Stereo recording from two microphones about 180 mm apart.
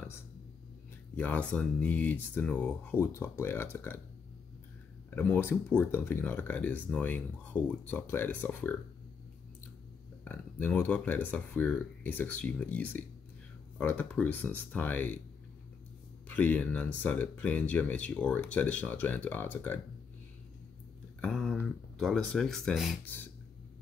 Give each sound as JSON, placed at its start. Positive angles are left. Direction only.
{"t": 1.1, "sound": "speech", "side_deg": 10}
{"t": 5.1, "sound": "speech", "side_deg": 10}
{"t": 10.2, "sound": "speech", "side_deg": 10}
{"t": 16.3, "sound": "speech", "side_deg": 10}
{"t": 21.2, "sound": "speech", "side_deg": 5}
{"t": 23.0, "sound": "beatboxing", "side_deg": 10}